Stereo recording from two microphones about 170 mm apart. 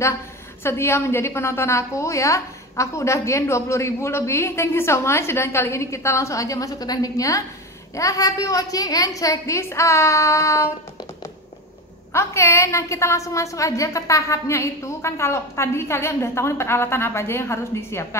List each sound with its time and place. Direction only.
0.7 s a woman's voice: 15° left (ahead or behind)
12.1 s a woman's voice: 15° left (ahead or behind)